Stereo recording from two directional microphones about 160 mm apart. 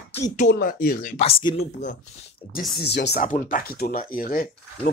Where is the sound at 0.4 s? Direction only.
60° left (ahead or behind).